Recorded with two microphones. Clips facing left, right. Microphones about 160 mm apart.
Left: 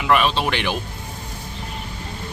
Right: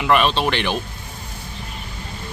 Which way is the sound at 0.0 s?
5° left (ahead or behind).